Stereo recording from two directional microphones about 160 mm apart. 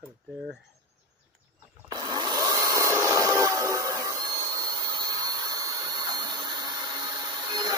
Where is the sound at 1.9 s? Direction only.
25° right (ahead or behind).